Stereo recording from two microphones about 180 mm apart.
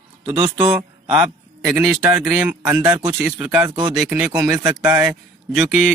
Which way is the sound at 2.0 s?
5° right (ahead or behind).